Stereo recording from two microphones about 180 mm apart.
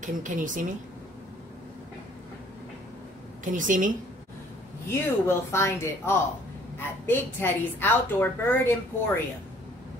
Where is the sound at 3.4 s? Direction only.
45° right (ahead or behind).